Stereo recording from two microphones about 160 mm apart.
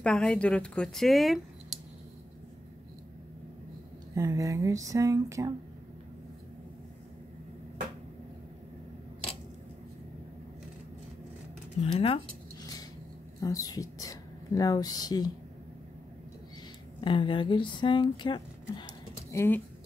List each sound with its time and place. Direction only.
0.0 s speech: 5° left (ahead or behind)
4.1 s speech: 20° right (ahead or behind)
11.8 s speech: 35° left (ahead or behind)
13.4 s speech: 25° left (ahead or behind)
17.0 s speech: 30° left (ahead or behind)
19.3 s speech: 15° left (ahead or behind)